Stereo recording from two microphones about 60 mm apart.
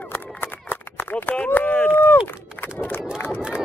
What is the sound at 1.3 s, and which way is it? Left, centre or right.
Run, left.